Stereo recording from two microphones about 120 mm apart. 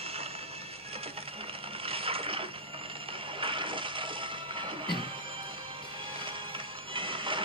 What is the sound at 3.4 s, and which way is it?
Music, 45° right (ahead or behind).